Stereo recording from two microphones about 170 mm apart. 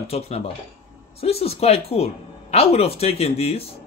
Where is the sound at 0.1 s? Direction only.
35° left (ahead or behind).